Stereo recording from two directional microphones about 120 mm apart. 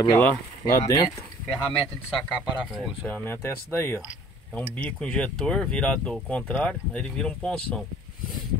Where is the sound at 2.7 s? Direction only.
15° left (ahead or behind).